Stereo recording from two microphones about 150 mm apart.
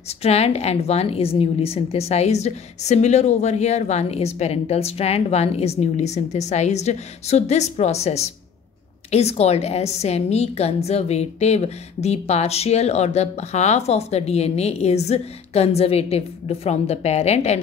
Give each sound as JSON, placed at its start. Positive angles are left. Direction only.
{"t": 0.2, "sound": "a woman's voice", "side_deg": 45}